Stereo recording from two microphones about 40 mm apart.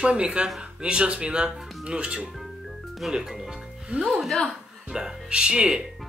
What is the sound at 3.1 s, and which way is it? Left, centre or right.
Speech, centre.